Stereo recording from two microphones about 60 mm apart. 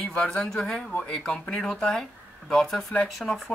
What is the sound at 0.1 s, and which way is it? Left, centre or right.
A man's voice, centre.